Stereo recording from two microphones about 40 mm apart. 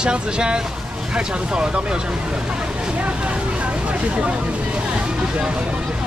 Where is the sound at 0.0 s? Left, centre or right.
Right.